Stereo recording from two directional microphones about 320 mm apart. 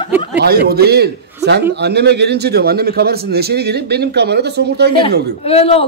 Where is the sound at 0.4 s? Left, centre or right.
Right.